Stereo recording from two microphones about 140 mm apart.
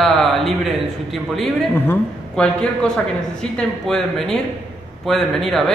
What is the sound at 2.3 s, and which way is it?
A man's voice, 5° left (ahead or behind).